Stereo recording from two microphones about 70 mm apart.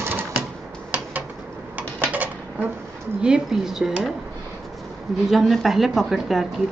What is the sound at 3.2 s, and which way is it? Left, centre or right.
Speech, centre.